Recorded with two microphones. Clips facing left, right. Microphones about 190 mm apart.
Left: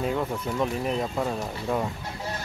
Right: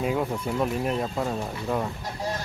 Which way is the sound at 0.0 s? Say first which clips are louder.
Right 1 dB; 10° right (ahead or behind).